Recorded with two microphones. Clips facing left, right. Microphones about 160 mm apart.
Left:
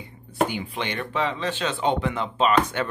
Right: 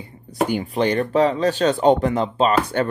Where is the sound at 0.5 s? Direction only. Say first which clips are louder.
Right 9 dB; 40° right (ahead or behind).